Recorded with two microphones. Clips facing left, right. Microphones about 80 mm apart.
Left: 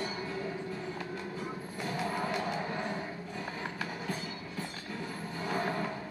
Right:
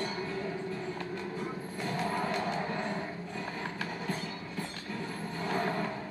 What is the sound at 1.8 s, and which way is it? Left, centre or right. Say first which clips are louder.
Music: right 1 dB; centre.